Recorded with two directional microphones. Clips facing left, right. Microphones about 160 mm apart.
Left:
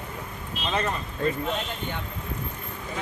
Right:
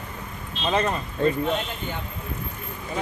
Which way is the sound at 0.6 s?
25° right (ahead or behind).